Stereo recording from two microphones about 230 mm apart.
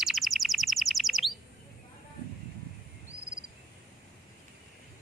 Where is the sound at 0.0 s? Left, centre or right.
Centre.